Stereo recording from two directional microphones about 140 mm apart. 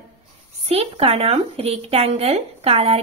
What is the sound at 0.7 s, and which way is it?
Speech, 45° right (ahead or behind).